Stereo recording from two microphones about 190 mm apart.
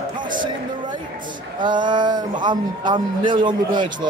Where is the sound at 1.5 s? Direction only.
25° right (ahead or behind).